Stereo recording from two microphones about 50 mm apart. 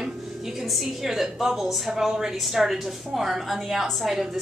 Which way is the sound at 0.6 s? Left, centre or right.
Centre.